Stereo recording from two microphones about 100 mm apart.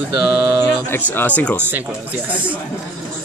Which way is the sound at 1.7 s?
20° right (ahead or behind).